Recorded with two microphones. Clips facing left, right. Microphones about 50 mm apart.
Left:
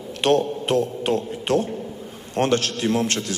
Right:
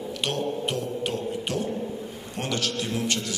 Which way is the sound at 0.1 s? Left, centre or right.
Left.